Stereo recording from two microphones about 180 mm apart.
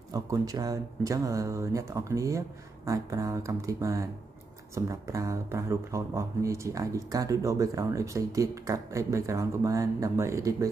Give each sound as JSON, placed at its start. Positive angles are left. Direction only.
{"t": 0.1, "sound": "speech", "side_deg": -20}